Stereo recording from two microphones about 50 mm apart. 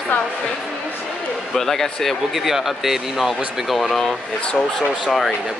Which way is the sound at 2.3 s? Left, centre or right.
Centre.